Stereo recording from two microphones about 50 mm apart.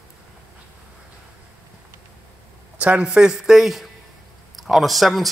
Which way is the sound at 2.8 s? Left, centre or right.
Right.